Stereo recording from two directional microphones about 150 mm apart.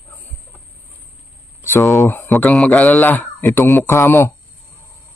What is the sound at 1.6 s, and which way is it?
Speech, 15° left (ahead or behind).